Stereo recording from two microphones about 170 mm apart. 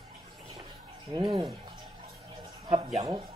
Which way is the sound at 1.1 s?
25° right (ahead or behind).